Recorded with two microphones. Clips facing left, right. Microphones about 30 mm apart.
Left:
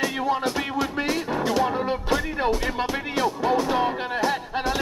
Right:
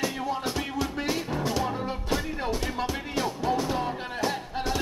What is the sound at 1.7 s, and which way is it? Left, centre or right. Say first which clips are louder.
Music: left 6 dB; left.